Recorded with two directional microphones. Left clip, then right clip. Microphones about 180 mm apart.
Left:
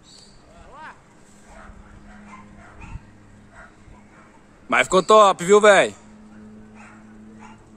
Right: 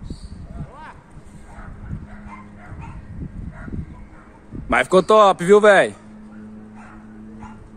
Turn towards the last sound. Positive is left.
turn(degrees=5)  # may be behind; listen again after turning